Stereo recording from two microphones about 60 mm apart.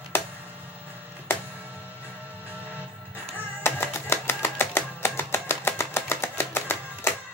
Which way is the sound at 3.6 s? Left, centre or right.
Left.